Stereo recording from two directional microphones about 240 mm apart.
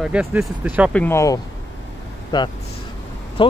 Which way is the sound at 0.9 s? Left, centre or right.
Centre.